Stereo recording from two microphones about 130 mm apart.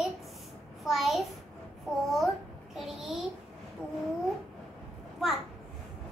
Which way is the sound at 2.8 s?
Centre (ahead or behind).